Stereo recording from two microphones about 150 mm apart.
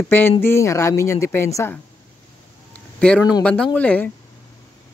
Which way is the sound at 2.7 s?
10° left (ahead or behind).